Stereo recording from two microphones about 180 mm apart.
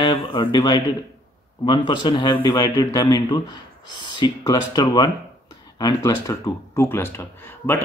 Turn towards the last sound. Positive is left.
turn(degrees=10)  # may be behind; listen again after turning